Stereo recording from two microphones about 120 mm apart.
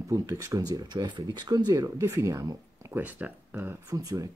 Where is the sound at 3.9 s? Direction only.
30° right (ahead or behind).